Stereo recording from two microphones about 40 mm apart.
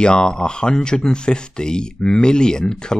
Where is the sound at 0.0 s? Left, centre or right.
Left.